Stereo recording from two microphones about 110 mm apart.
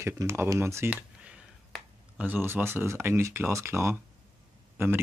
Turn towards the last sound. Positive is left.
turn(degrees=-20)  # may be behind; listen again after turning